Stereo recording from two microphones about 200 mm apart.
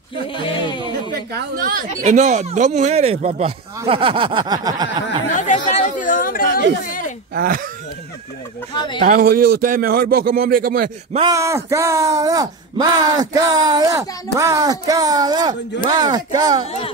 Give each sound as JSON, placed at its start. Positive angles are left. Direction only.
{"t": 0.3, "sound": "a sound", "side_deg": 25}
{"t": 1.3, "sound": "speech", "side_deg": -45}
{"t": 5.3, "sound": "chatter", "side_deg": 35}
{"t": 6.8, "sound": "a sound", "side_deg": 45}
{"t": 7.3, "sound": "a man's voice", "side_deg": -45}
{"t": 8.7, "sound": "speech", "side_deg": 25}
{"t": 9.0, "sound": "a man's voice", "side_deg": -45}
{"t": 11.1, "sound": "speech", "side_deg": -15}